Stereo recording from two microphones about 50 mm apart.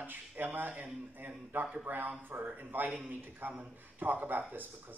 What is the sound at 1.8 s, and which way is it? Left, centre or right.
Speech, right.